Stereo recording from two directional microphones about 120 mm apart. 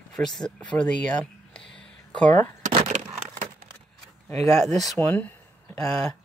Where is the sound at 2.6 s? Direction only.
90° right.